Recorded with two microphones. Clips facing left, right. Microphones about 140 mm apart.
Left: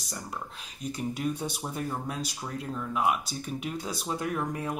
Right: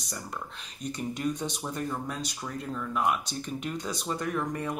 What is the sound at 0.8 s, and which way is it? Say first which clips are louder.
Speech: even; 5° left (ahead or behind).